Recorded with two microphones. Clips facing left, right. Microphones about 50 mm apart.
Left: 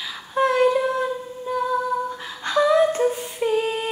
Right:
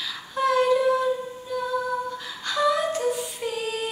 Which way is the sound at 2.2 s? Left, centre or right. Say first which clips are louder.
Left 5 dB; left.